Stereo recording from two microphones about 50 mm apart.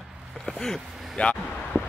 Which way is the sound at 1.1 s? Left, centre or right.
Left.